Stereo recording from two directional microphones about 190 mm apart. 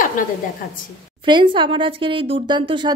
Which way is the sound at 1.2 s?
25° right (ahead or behind).